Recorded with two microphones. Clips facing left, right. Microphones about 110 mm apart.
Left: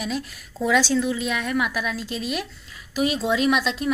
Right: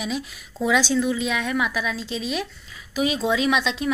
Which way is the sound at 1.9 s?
50° left (ahead or behind).